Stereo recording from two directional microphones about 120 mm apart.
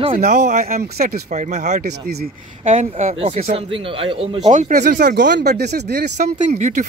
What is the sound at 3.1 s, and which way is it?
Speech, 60° right (ahead or behind).